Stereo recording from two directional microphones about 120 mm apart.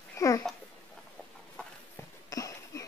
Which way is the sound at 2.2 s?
30° left (ahead or behind).